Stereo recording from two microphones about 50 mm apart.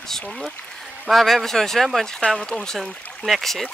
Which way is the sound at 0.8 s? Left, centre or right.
Centre.